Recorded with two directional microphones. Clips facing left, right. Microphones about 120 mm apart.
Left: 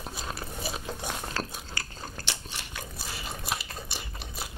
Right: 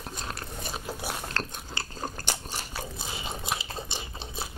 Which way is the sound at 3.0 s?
25° right (ahead or behind).